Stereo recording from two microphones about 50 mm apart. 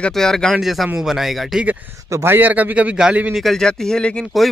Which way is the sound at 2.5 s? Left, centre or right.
Right.